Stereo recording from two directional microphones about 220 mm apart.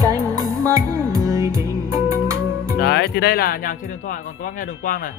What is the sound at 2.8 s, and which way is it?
Speech, 45° left (ahead or behind).